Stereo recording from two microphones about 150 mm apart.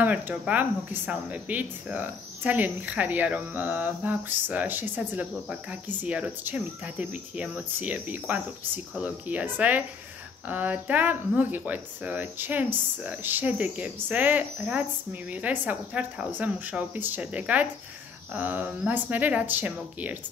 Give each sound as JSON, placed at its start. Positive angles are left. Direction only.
{"t": 0.0, "sound": "speech", "side_deg": -10}